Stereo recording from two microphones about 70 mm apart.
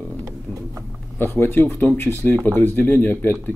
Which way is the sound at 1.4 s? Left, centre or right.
Left.